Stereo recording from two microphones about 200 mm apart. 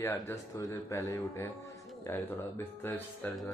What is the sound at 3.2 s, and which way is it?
Speech, 10° left (ahead or behind).